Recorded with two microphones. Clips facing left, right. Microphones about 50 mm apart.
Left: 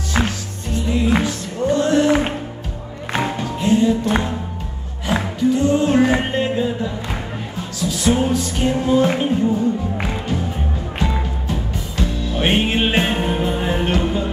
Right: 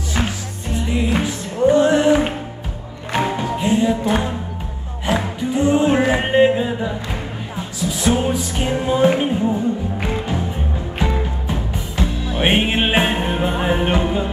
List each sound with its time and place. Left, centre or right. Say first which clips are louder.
0.2 s music: left 2 dB; centre
0.8 s music: left 2 dB; centre
3.2 s music: right 2 dB; centre
5.4 s music: left 1 dB; centre